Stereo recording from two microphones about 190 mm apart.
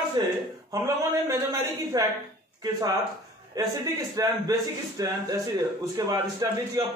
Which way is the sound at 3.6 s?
20° right (ahead or behind).